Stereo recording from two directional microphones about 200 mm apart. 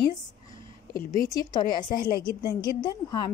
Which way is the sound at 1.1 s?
15° left (ahead or behind).